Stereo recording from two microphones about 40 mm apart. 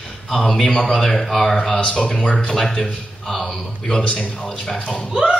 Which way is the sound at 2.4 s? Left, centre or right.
Centre.